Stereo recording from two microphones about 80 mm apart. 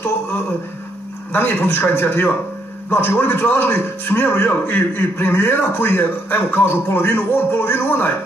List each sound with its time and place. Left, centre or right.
1.3 s a man's voice: left